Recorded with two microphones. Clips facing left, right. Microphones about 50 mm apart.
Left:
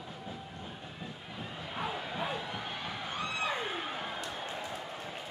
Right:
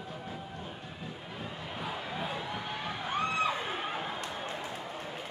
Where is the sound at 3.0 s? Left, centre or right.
Right.